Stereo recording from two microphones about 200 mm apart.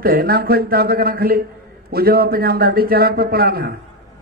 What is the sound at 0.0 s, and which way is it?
A man's voice, 50° right (ahead or behind).